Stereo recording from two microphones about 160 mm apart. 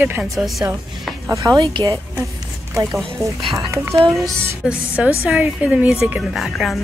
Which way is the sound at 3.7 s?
15° right (ahead or behind).